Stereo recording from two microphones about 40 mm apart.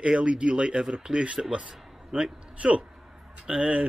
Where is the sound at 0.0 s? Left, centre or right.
Right.